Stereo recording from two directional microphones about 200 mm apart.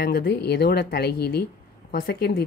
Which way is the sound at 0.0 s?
55° left (ahead or behind).